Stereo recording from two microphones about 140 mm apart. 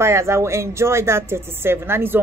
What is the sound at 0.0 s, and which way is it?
Speech, 20° right (ahead or behind).